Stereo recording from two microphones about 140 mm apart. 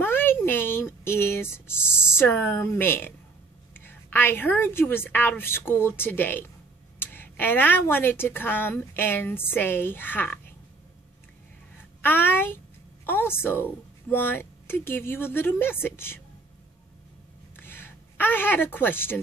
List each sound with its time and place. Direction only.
0.0 s a sound: 15° left (ahead or behind)
2.1 s a woman's voice: 15° left (ahead or behind)
12.0 s a woman's voice: 15° left (ahead or behind)
17.6 s a woman's voice: 15° left (ahead or behind)